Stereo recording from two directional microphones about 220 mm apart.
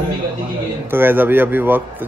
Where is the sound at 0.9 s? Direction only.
10° right (ahead or behind).